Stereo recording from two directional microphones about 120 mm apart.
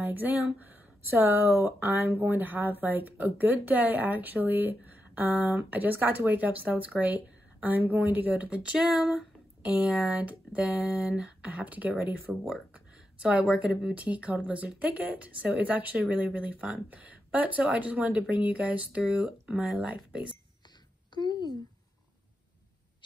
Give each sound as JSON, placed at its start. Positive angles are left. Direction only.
{"t": 0.0, "sound": "speech", "side_deg": -15}
{"t": 21.1, "sound": "speech", "side_deg": 35}